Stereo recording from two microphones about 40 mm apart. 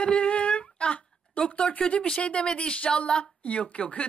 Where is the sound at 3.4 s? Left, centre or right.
Left.